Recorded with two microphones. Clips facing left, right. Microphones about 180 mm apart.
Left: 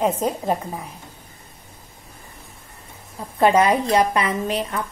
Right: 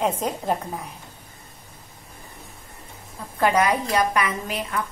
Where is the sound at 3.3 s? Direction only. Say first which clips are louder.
Left 4 dB; 25° left (ahead or behind).